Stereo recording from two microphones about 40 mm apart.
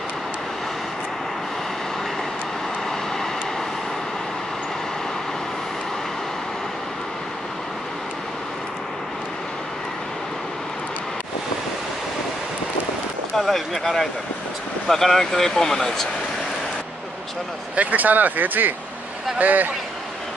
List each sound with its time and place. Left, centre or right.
13.4 s speech: centre
17.7 s speech: right